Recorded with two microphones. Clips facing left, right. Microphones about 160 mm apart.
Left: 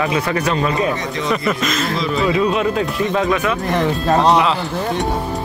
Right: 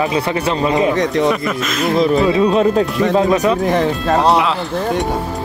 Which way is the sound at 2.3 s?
30° right (ahead or behind).